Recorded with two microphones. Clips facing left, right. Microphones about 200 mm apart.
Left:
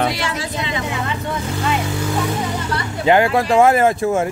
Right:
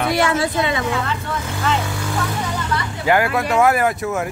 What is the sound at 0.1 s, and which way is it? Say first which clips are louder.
Vehicle: right 6 dB; 60° right (ahead or behind).